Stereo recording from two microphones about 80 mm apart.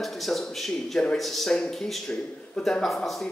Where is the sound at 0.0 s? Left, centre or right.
Centre.